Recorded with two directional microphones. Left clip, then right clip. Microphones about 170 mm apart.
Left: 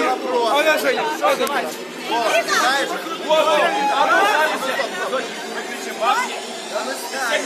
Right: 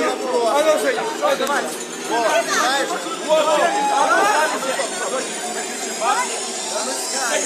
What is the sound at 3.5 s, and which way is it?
Speech, centre (ahead or behind).